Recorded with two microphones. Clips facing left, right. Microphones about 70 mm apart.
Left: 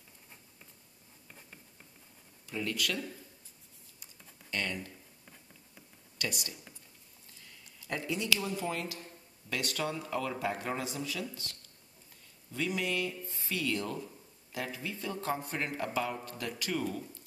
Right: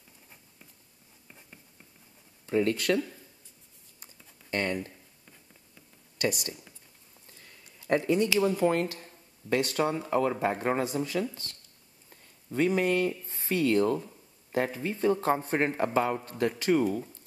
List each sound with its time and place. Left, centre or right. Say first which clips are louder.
2.4 s speech: right 9 dB; right
4.0 s typing: right 2 dB; right
7.3 s a sound: right 2 dB; right
8.4 s speech: right 11 dB; right
9.5 s speech: right 8 dB; right